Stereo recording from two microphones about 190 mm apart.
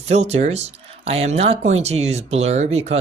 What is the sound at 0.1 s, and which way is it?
Speech, 35° right (ahead or behind).